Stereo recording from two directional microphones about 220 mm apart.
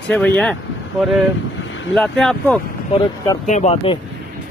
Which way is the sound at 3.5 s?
30° left (ahead or behind).